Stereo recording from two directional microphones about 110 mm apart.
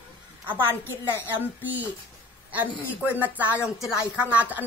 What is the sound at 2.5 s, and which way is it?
Speech, 15° right (ahead or behind).